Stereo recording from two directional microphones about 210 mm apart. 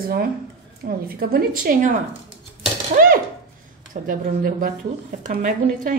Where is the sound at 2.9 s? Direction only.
45° right (ahead or behind).